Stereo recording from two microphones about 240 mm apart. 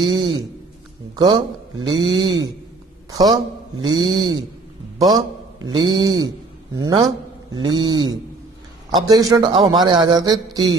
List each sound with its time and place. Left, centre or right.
0.0 s a man's voice: centre